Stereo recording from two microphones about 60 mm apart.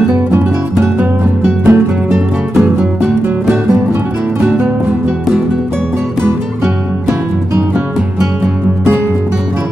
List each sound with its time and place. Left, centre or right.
0.9 s music: right
2.0 s music: centre